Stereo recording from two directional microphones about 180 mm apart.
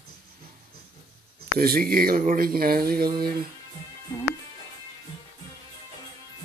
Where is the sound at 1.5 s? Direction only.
55° right (ahead or behind).